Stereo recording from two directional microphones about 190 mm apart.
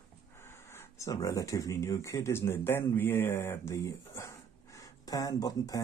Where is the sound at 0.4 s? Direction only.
15° left (ahead or behind).